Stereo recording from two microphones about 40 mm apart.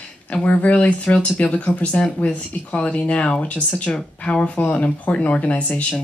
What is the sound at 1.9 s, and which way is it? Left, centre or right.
Speech, left.